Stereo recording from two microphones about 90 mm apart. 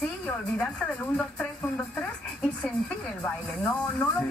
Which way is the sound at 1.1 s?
15° left (ahead or behind).